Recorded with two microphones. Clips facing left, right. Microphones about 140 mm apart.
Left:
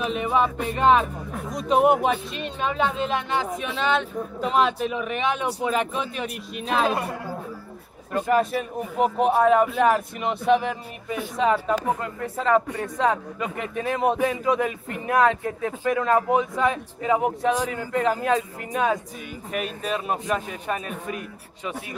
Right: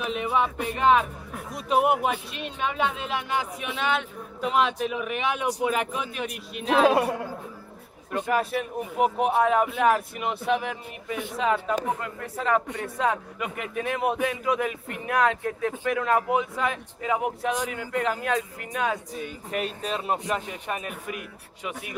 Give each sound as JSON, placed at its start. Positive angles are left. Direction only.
{"t": 0.0, "sound": "music", "side_deg": -5}
{"t": 0.4, "sound": "speech", "side_deg": -5}
{"t": 6.2, "sound": "speech", "side_deg": 0}
{"t": 8.1, "sound": "speech", "side_deg": -5}
{"t": 18.0, "sound": "speech", "side_deg": 0}
{"t": 19.1, "sound": "speech", "side_deg": -25}